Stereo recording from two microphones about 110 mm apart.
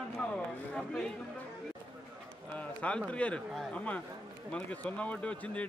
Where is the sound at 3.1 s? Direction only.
10° left (ahead or behind).